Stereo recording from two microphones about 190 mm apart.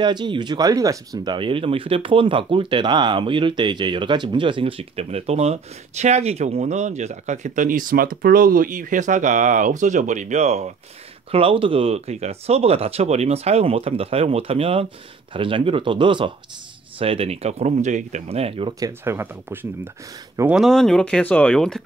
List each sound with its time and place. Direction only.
0.0 s speech: 25° right (ahead or behind); by 21.8 s 5° left (ahead or behind)